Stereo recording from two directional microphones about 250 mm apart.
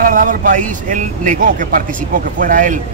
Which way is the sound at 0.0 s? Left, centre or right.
Right.